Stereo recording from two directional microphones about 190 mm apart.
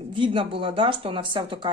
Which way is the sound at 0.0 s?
25° right (ahead or behind).